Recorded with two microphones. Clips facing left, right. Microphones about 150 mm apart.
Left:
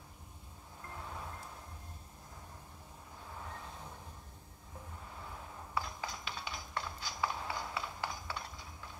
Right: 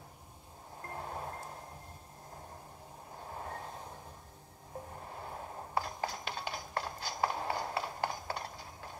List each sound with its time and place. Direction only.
0.8 s vehicle: 45° right (ahead or behind)
3.2 s vehicle: 45° right (ahead or behind)
4.9 s a sound: 45° right (ahead or behind)